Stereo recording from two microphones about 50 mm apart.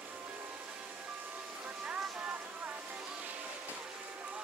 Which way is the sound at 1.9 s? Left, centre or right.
Right.